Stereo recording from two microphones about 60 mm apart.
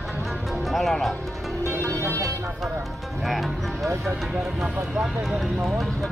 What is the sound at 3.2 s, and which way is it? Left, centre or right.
Speech, centre.